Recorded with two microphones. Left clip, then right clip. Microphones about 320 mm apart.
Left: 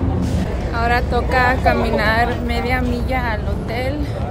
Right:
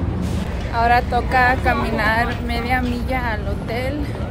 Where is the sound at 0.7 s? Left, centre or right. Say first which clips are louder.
Right 2 dB; centre.